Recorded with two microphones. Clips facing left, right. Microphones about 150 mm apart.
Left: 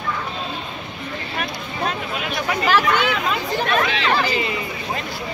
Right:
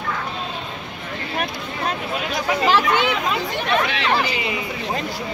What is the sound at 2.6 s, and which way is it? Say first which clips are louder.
Speech: even; 25° right (ahead or behind).